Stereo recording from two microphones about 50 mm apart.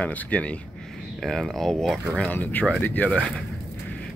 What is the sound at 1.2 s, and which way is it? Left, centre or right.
Speech, centre.